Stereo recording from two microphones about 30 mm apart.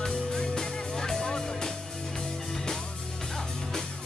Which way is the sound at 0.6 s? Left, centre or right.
Left.